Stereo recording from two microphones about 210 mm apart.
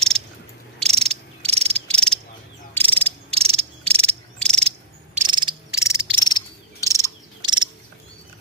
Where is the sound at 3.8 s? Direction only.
5° left (ahead or behind).